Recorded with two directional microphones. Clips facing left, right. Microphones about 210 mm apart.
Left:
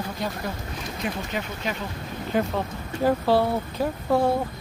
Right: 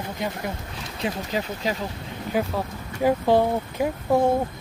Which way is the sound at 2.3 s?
10° right (ahead or behind).